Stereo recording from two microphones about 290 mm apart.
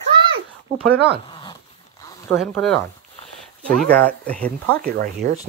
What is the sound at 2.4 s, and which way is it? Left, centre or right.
Speech, centre.